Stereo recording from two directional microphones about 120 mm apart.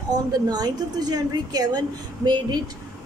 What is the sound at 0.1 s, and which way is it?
Speech, 35° right (ahead or behind).